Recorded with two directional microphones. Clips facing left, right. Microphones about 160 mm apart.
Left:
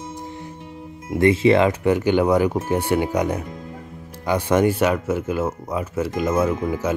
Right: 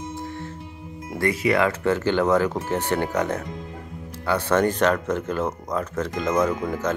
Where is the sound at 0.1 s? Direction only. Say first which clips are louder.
Right 1 dB; 15° left (ahead or behind).